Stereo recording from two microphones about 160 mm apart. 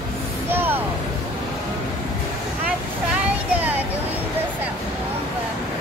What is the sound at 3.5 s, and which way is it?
Vehicle, 10° right (ahead or behind).